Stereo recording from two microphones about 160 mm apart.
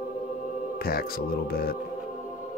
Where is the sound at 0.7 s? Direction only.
70° left (ahead or behind).